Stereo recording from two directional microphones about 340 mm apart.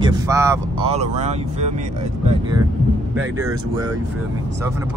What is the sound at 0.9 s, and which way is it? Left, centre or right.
Speech, centre.